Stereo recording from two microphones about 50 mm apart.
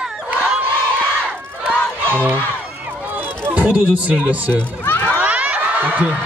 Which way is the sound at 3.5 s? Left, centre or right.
Right.